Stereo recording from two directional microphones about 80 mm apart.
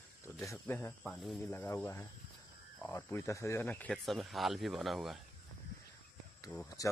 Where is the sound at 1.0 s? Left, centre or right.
Centre.